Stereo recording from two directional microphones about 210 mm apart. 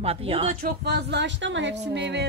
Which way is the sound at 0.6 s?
50° right (ahead or behind).